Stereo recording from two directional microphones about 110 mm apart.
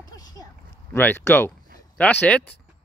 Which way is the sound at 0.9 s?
20° left (ahead or behind).